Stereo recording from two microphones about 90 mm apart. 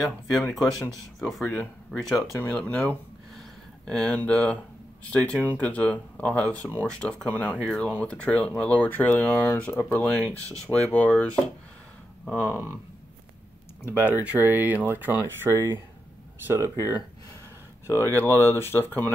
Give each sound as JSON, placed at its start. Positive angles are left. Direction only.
{"t": 0.6, "sound": "speech", "side_deg": 5}
{"t": 2.5, "sound": "speech", "side_deg": 15}
{"t": 12.4, "sound": "speech", "side_deg": 25}
{"t": 13.8, "sound": "speech", "side_deg": -20}
{"t": 17.8, "sound": "speech", "side_deg": 25}